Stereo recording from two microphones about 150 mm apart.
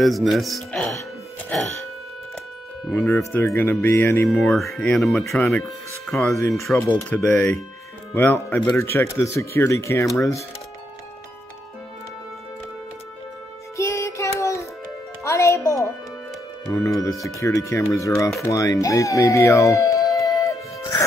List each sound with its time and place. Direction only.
0.0 s speech: centre (ahead or behind)
2.9 s speech: 15° left (ahead or behind)
4.6 s speech: 5° left (ahead or behind)
7.0 s speech: 15° left (ahead or behind)
13.7 s music: 20° left (ahead or behind)
16.7 s speech: 20° left (ahead or behind)